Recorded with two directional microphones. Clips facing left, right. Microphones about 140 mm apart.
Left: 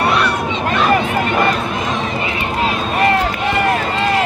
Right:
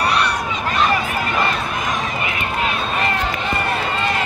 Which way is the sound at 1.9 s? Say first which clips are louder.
Left 3 dB; 25° left (ahead or behind).